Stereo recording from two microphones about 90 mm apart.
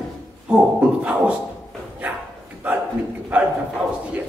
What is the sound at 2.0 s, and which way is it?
Bow-wow, 15° right (ahead or behind).